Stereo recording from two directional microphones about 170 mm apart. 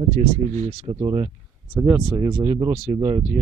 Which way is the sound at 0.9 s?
25° right (ahead or behind).